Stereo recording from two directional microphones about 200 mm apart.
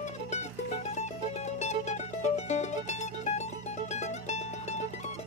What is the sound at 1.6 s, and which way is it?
Music, 35° left (ahead or behind).